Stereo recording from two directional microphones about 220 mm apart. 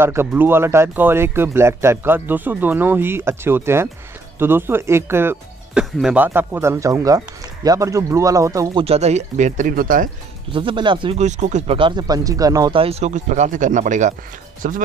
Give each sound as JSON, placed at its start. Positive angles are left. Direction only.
{"t": 0.0, "sound": "speech", "side_deg": -10}
{"t": 8.8, "sound": "speech", "side_deg": -30}
{"t": 10.5, "sound": "speech", "side_deg": -25}